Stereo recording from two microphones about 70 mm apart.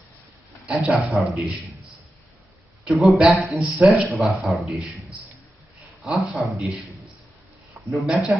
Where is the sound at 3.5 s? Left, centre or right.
Centre.